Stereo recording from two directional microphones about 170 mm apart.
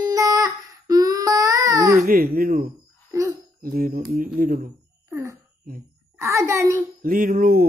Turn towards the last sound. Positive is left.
turn(degrees=-55)  # may be behind; listen again after turning